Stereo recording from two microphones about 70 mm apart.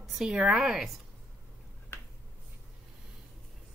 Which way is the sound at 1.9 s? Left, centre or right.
Left.